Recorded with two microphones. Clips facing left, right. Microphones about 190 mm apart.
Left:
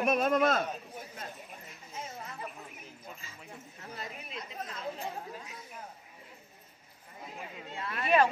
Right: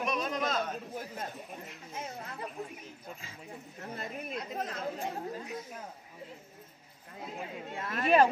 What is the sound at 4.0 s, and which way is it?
Speech, 50° right (ahead or behind).